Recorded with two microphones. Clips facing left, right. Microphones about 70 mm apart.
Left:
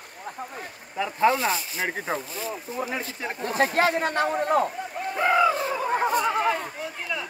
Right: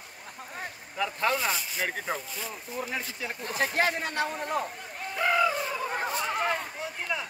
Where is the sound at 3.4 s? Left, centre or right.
Left.